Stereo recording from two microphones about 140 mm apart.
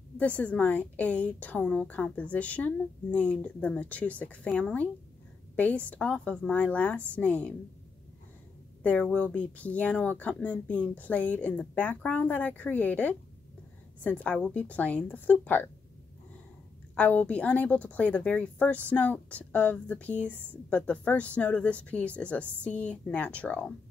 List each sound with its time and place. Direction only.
0.2 s a woman's voice: 10° left (ahead or behind)
8.8 s a woman's voice: 10° left (ahead or behind)
16.9 s a woman's voice: 10° left (ahead or behind)